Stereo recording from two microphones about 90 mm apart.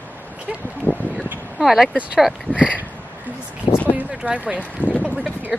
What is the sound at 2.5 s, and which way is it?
Speech, 15° right (ahead or behind).